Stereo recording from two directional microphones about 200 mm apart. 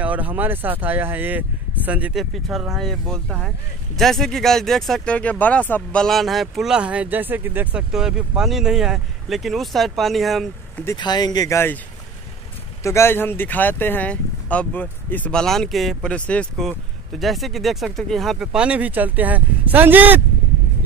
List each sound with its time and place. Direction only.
0.0 s speech: 10° right (ahead or behind)
10.9 s speech: 20° left (ahead or behind)
12.8 s speech: 15° left (ahead or behind); by 20.2 s 10° right (ahead or behind)